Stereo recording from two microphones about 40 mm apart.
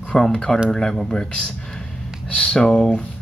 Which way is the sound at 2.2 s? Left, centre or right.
Left.